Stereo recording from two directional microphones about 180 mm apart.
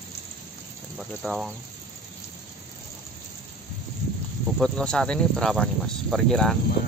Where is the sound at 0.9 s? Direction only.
Centre (ahead or behind).